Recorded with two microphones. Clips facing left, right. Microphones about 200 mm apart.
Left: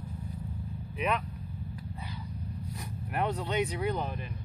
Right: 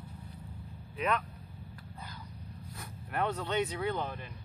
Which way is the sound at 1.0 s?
15° left (ahead or behind).